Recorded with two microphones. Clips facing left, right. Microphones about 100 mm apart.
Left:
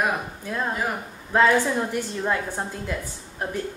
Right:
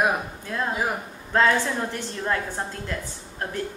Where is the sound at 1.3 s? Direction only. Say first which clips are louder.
Left 2 dB; 10° left (ahead or behind).